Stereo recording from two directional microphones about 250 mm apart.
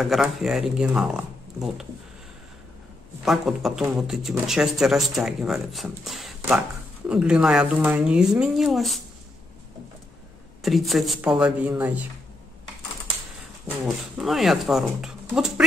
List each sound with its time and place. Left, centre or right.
0.0 s speech: centre
3.3 s speech: centre
10.6 s speech: centre
13.7 s speech: centre